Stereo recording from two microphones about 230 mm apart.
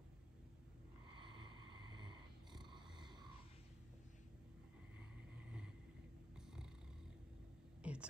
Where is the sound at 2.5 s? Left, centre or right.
Centre.